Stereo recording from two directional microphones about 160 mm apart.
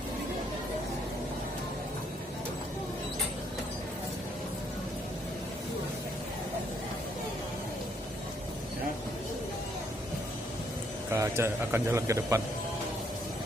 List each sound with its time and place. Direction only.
11.1 s speech: 15° right (ahead or behind)